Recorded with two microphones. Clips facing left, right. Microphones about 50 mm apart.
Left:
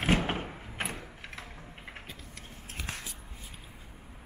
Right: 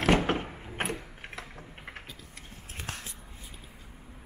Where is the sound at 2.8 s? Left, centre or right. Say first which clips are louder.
Even; right.